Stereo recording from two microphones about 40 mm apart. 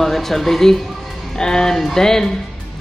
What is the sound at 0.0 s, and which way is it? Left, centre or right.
A man's voice, centre.